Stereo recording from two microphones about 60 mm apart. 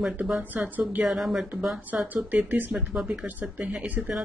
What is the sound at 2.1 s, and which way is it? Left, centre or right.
Speech, right.